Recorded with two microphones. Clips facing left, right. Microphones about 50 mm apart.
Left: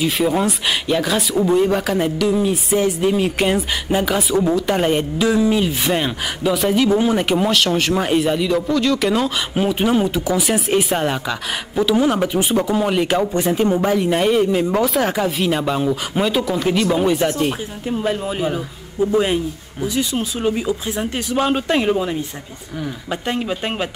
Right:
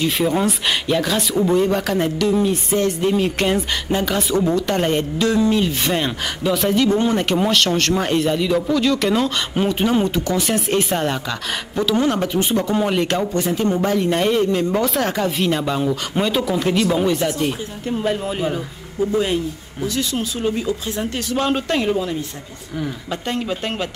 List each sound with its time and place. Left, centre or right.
0.0 s speech: centre
17.9 s speech: centre
19.1 s speech: centre
23.2 s speech: centre